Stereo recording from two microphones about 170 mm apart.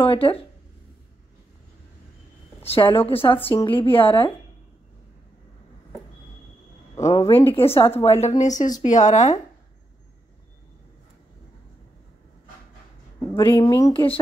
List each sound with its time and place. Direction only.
0.0 s speech: 30° left (ahead or behind)
2.6 s speech: 30° left (ahead or behind)
3.3 s a woman's voice: 10° left (ahead or behind)
3.6 s speech: 30° left (ahead or behind)
7.0 s speech: 40° left (ahead or behind)
13.4 s speech: 25° left (ahead or behind)